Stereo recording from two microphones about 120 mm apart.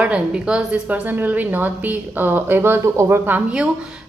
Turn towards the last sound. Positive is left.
turn(degrees=-10)  # may be behind; listen again after turning